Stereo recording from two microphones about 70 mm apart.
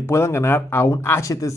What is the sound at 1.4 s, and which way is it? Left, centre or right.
Speech, left.